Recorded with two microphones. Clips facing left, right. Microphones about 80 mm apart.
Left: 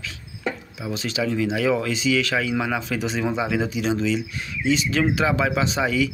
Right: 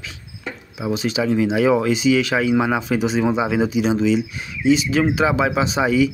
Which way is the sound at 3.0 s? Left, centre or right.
Centre.